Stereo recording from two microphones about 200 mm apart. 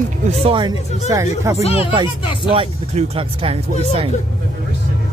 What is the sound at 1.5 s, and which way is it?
Speech, 30° left (ahead or behind).